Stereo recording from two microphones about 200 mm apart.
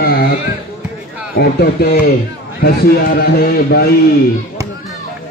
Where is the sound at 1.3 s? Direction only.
55° left (ahead or behind).